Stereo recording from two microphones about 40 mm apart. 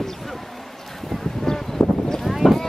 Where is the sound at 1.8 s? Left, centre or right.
Centre.